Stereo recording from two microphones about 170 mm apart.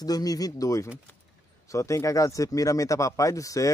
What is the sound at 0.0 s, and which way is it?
Speech, 20° left (ahead or behind).